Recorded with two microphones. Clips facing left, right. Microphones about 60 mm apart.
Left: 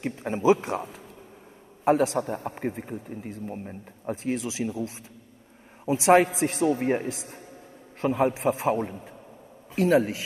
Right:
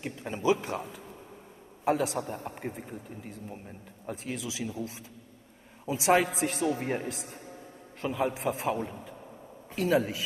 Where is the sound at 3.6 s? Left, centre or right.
Left.